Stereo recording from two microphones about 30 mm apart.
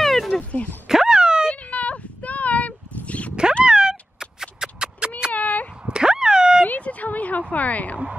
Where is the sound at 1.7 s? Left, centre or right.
Left.